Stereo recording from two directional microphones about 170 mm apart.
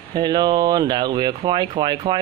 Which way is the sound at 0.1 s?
25° right (ahead or behind).